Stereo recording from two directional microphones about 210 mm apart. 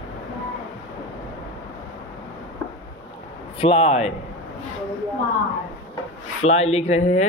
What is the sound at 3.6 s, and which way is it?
Speech, 30° left (ahead or behind).